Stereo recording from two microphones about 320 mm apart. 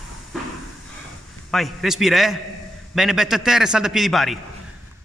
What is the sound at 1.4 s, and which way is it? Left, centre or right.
A man's voice, centre.